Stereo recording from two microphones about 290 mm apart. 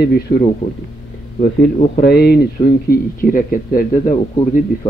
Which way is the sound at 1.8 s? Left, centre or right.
Left.